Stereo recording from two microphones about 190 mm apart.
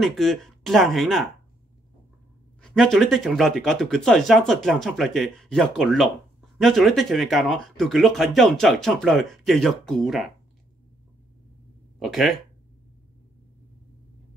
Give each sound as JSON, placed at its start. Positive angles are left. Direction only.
{"t": 0.0, "sound": "speech", "side_deg": 0}
{"t": 2.6, "sound": "speech", "side_deg": 5}
{"t": 12.0, "sound": "speech", "side_deg": 0}